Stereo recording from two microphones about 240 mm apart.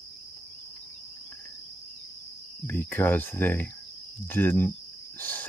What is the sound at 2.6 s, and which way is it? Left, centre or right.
Speech, centre.